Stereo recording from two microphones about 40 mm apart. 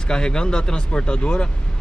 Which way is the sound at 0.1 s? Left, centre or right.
Left.